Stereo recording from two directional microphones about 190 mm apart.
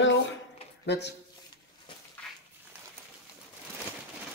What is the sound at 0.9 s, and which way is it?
Speech, 65° left (ahead or behind).